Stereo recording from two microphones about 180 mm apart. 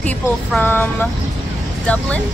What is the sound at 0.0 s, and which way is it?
Speech, 10° left (ahead or behind).